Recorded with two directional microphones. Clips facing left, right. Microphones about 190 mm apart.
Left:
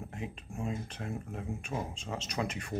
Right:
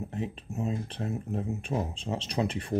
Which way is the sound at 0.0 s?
25° right (ahead or behind).